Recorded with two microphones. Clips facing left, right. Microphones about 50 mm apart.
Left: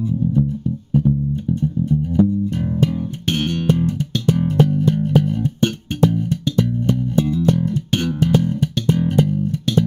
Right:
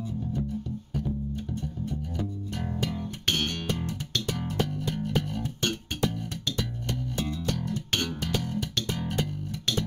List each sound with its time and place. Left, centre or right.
0.9 s music: left
9.1 s bass guitar: centre